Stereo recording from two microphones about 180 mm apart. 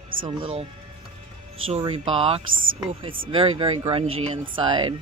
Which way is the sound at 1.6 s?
30° right (ahead or behind).